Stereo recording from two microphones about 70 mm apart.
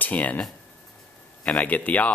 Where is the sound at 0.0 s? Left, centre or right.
Left.